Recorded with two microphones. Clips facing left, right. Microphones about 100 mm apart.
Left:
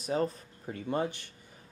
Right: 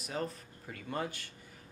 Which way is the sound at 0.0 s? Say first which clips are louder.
Left 7 dB; 30° left (ahead or behind).